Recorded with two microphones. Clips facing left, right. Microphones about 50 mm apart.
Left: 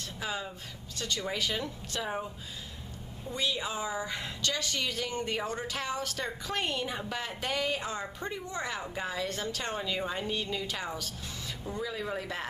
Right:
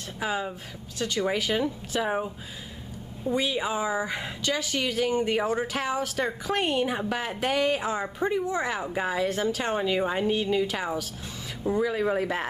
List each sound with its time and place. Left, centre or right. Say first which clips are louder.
0.2 s a woman's voice: right 7 dB; centre
9.8 s a woman's voice: right 8 dB; right
11.9 s speech: right 9 dB; right